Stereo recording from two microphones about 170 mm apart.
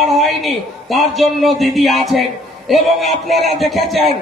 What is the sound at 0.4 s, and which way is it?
A man's voice, centre (ahead or behind).